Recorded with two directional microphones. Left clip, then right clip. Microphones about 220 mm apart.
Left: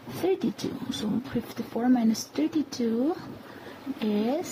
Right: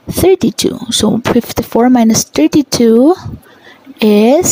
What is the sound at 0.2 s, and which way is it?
Speech, 45° right (ahead or behind).